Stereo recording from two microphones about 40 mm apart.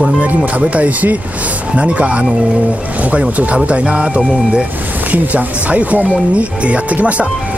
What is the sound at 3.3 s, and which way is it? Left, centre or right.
Speech, right.